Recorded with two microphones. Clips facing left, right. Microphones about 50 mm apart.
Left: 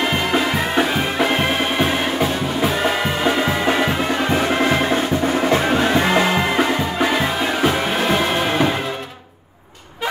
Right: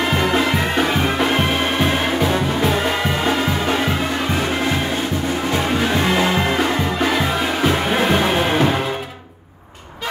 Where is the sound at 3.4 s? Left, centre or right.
Centre.